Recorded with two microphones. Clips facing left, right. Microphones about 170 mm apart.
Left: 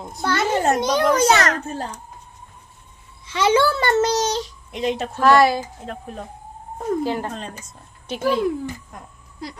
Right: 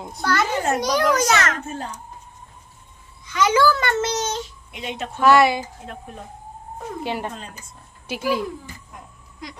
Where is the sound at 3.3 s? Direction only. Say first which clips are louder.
Left 1 dB; 30° left (ahead or behind).